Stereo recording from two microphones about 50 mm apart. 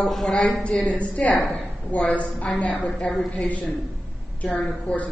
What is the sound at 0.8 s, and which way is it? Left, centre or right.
Speech, left.